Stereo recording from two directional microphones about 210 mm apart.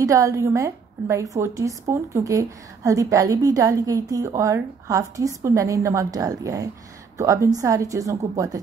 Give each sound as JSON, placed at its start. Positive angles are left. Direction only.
{"t": 0.0, "sound": "a woman's voice", "side_deg": -15}